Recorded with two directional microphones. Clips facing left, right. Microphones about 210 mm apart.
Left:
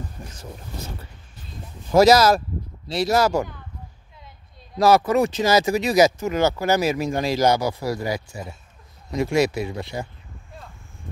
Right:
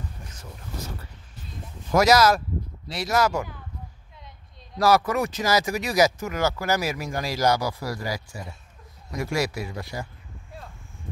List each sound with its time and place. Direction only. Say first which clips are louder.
2.0 s speech: left 4 dB; 30° left (ahead or behind)
4.7 s speech: left 4 dB; 25° left (ahead or behind)